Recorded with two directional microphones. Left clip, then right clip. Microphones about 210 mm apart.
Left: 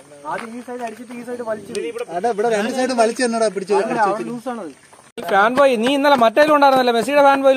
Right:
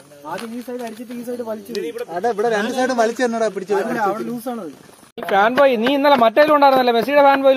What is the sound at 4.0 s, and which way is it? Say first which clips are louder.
Speech: left 2 dB; 50° right (ahead or behind).